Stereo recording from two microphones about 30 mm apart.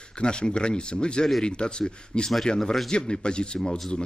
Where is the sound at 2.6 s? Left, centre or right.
Centre.